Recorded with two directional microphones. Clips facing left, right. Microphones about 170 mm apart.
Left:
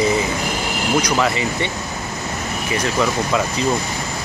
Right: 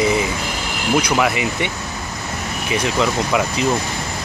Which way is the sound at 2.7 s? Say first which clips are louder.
Right 1 dB; 15° right (ahead or behind).